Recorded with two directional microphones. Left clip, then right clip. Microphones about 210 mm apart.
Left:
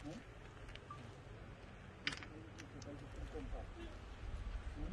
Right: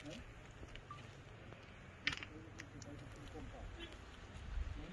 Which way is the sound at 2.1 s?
50° left (ahead or behind).